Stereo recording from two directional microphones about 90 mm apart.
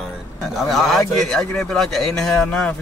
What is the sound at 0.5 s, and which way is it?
A man's voice, centre (ahead or behind).